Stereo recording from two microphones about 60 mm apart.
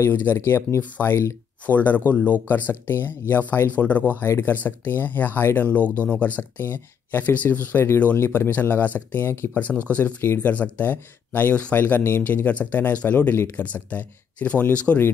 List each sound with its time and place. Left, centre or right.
0.1 s speech: left
0.4 s speech: left
0.7 s speech: left
4.2 s speech: left
6.0 s speech: left
9.5 s speech: left